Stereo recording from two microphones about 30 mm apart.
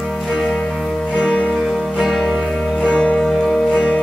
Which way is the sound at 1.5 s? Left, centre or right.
Centre.